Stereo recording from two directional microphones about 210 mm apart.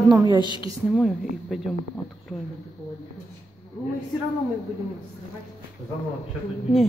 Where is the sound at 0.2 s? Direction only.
20° right (ahead or behind).